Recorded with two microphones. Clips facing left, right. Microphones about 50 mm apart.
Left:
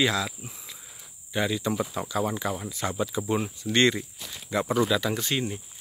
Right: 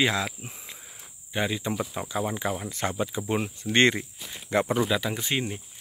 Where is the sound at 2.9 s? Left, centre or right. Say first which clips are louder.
Left 1 dB; right.